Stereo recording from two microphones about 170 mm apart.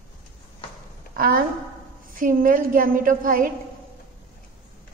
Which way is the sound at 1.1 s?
55° right (ahead or behind).